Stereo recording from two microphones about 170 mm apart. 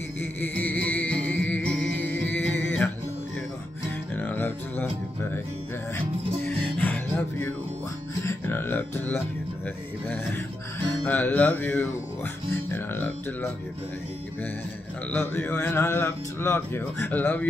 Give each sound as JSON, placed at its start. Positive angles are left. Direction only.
{"t": 0.2, "sound": "music", "side_deg": 10}
{"t": 4.1, "sound": "music", "side_deg": 10}
{"t": 6.4, "sound": "music", "side_deg": 10}
{"t": 11.1, "sound": "music", "side_deg": 10}
{"t": 15.1, "sound": "speech", "side_deg": 10}